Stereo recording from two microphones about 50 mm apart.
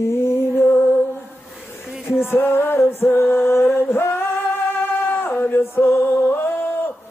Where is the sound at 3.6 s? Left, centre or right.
Left.